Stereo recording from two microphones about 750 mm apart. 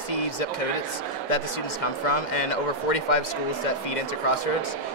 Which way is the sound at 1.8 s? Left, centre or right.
Left.